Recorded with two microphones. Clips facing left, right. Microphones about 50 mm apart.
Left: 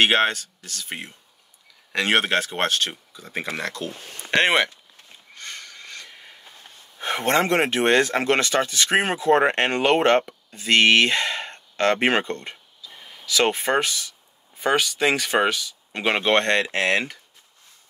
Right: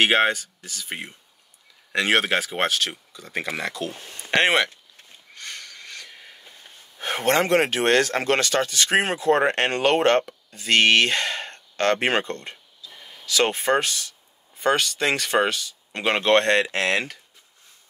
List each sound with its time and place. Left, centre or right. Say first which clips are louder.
0.0 s speech: even; centre
2.8 s speech: even; centre
3.4 s speech: left 1 dB; centre
7.0 s a sound: even; left
7.5 s speech: even; left
16.4 s speech: right 1 dB; right
16.7 s speech: left 1 dB; left